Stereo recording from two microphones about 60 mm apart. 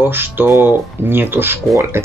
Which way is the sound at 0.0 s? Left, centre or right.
Right.